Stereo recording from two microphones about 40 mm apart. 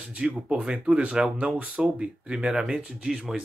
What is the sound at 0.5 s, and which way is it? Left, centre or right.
Speech, right.